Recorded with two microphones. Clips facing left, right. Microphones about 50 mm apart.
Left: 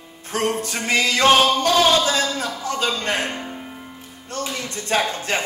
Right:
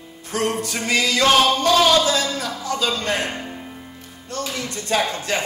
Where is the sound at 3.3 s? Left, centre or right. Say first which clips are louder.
Even; centre.